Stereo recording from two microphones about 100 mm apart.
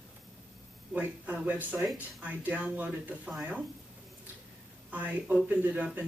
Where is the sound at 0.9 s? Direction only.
15° right (ahead or behind).